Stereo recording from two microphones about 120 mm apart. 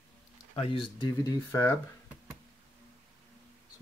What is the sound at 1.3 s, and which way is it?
Speech, 20° left (ahead or behind).